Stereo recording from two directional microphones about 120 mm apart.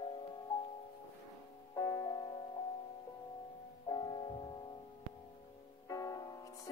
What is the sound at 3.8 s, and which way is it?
Music, 35° left (ahead or behind).